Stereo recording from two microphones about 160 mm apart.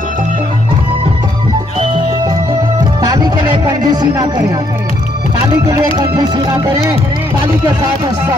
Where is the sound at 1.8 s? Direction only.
30° right (ahead or behind).